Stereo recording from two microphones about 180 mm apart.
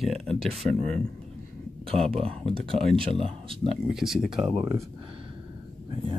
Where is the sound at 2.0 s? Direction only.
30° right (ahead or behind).